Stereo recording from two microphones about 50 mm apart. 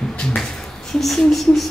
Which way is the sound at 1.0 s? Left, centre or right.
Centre.